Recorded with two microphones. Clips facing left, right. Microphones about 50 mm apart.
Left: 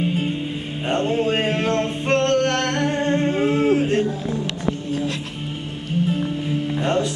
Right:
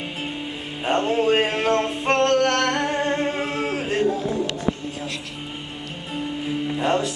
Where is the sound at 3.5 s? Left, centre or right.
Right.